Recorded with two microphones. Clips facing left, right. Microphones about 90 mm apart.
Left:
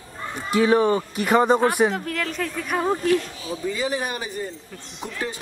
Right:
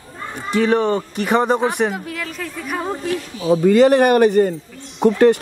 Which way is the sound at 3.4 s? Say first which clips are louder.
Right 14 dB; 80° right.